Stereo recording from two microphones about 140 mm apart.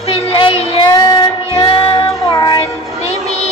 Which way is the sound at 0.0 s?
45° left (ahead or behind).